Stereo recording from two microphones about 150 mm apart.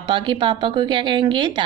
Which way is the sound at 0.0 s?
35° right (ahead or behind).